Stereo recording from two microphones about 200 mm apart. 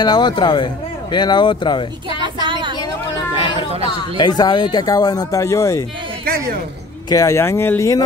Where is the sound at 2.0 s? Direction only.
25° right (ahead or behind).